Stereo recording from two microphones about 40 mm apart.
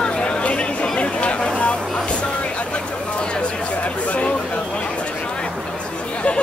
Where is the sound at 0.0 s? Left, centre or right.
Left.